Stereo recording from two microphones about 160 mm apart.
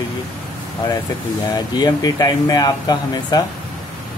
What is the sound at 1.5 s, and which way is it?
Speech, 25° left (ahead or behind).